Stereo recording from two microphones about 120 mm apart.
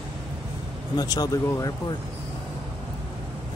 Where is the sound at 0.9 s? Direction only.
30° left (ahead or behind).